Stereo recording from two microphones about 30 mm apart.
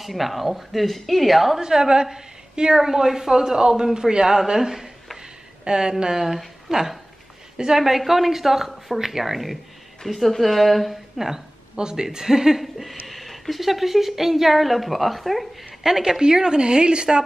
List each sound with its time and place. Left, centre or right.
0.0 s speech: centre
1.6 s a woman's voice: right
5.7 s a woman's voice: right
6.1 s a woman's voice: centre
11.7 s a woman's voice: right
13.0 s speech: centre
15.8 s a woman's voice: centre